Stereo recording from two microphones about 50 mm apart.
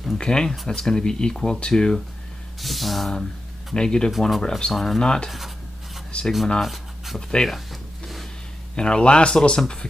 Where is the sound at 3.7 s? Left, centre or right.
Centre.